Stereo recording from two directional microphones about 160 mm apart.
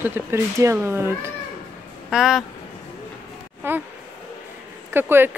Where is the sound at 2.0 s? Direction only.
Centre (ahead or behind).